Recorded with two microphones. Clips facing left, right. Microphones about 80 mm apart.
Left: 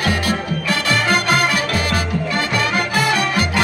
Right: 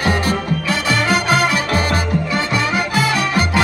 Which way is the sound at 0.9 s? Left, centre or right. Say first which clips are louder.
Right 1 dB; centre.